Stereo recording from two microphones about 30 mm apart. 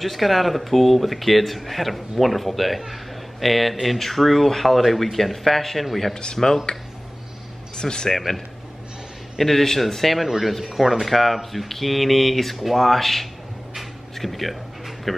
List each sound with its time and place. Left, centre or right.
0.0 s a man's voice: centre
7.7 s speech: left
9.4 s speech: centre
10.2 s a man's voice: centre
15.1 s a sound: centre